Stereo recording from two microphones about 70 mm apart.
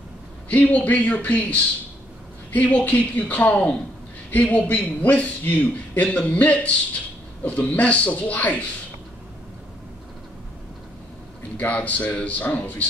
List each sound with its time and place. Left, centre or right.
0.5 s a man's voice: left
11.5 s a man's voice: left